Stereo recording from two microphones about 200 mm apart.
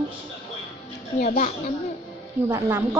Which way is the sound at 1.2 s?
40° left (ahead or behind).